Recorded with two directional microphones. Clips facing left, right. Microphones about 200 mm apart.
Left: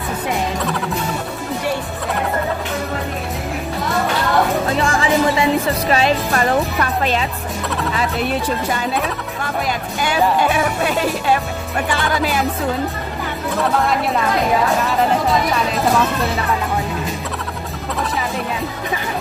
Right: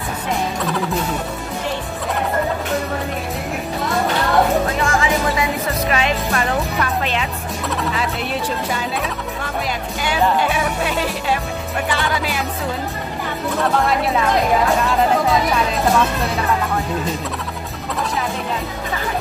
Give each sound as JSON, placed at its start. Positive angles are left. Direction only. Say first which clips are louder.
{"t": 4.7, "sound": "music", "louder": "left 2 dB", "side_deg": 30}
{"t": 13.7, "sound": "speech", "louder": "even", "side_deg": 0}